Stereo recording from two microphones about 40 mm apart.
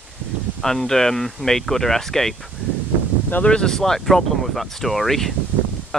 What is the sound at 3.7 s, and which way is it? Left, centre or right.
Speech, centre.